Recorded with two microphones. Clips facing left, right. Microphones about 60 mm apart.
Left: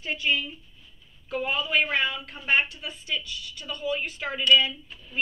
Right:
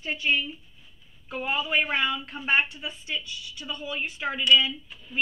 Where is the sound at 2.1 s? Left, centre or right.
Right.